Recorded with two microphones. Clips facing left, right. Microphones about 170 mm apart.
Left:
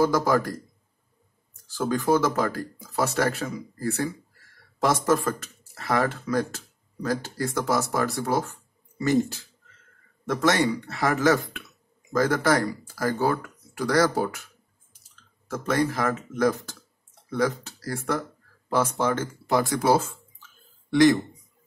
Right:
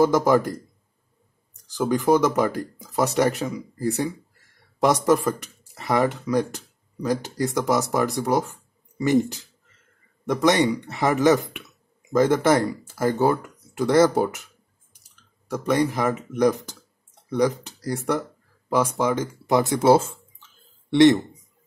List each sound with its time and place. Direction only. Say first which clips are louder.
0.0 s speech: right 4 dB; 20° right (ahead or behind)
1.7 s speech: right 3 dB; 15° right (ahead or behind)